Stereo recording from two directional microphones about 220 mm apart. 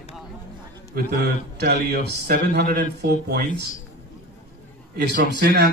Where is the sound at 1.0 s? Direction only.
45° right (ahead or behind).